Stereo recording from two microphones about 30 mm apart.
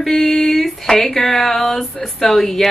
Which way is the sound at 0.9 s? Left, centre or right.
Centre.